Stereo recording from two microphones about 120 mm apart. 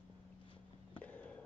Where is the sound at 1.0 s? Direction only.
10° left (ahead or behind).